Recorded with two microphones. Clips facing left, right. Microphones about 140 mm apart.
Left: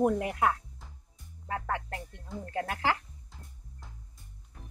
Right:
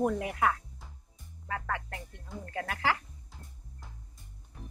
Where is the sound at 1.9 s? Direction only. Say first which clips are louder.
Left 3 dB; centre (ahead or behind).